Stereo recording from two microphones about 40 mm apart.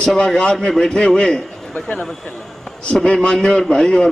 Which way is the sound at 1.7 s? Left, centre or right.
Left.